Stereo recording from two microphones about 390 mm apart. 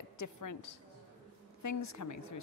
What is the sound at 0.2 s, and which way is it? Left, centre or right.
A woman's voice, left.